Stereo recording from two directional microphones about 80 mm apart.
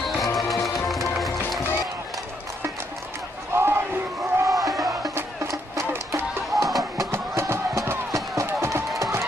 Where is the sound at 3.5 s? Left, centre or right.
Right.